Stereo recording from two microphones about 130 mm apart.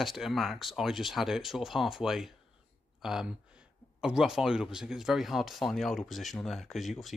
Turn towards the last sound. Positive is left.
turn(degrees=0)  # may be behind; listen again after turning